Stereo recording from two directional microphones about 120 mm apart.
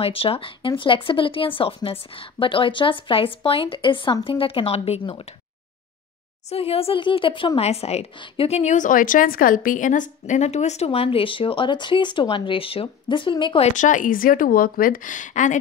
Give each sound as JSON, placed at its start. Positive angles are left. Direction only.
{"t": 0.0, "sound": "speech", "side_deg": 50}
{"t": 6.5, "sound": "speech", "side_deg": 55}
{"t": 8.5, "sound": "speech", "side_deg": 75}
{"t": 13.6, "sound": "speech", "side_deg": 80}